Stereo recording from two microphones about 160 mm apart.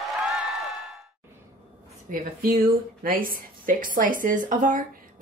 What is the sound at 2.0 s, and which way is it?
A woman's voice, 60° right (ahead or behind).